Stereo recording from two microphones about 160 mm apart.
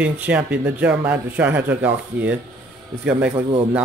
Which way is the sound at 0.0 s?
10° right (ahead or behind).